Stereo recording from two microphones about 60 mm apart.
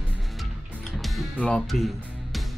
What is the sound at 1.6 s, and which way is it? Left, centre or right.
Music, centre.